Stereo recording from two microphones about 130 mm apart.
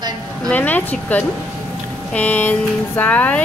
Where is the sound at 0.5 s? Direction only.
15° left (ahead or behind).